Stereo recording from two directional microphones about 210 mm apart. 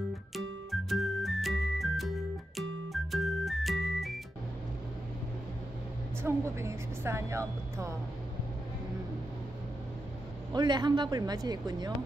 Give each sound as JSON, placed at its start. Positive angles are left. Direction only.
{"t": 0.7, "sound": "music", "side_deg": 0}
{"t": 6.2, "sound": "speech", "side_deg": -10}
{"t": 10.5, "sound": "speech", "side_deg": -20}